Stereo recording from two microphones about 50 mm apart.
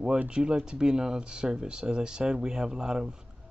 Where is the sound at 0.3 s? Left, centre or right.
Centre.